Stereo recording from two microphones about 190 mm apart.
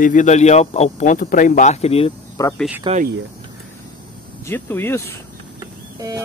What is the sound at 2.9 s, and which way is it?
Speech, 25° right (ahead or behind).